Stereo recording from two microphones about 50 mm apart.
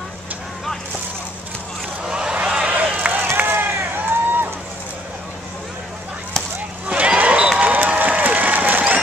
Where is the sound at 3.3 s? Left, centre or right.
Right.